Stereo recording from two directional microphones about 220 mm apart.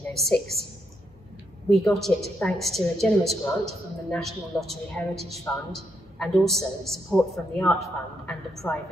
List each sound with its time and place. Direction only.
0.1 s a woman's voice: centre (ahead or behind)
1.7 s a woman's voice: centre (ahead or behind)